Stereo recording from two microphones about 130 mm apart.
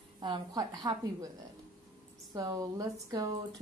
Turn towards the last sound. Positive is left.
turn(degrees=-30)  # may be behind; listen again after turning